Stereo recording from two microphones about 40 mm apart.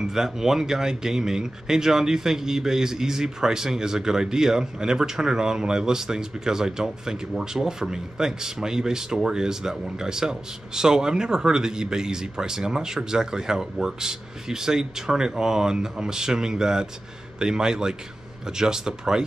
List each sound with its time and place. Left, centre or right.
0.0 s speech: centre